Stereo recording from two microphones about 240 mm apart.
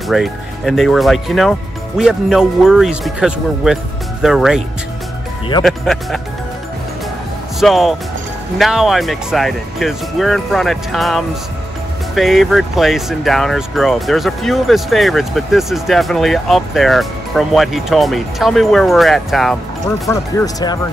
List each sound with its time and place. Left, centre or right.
0.1 s speech: centre
5.6 s speech: centre
7.6 s speech: centre
20.1 s speech: centre